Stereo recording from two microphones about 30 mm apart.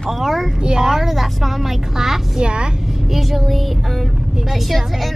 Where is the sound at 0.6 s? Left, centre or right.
Right.